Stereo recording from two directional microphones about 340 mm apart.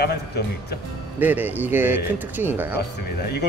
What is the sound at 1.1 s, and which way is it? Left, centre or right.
Speech, centre.